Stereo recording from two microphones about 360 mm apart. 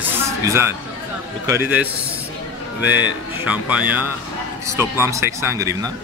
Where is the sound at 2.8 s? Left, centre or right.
Left.